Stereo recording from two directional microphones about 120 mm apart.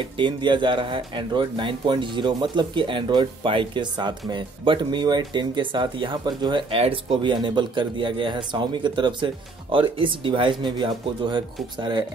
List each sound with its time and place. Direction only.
0.2 s speech: 40° right (ahead or behind)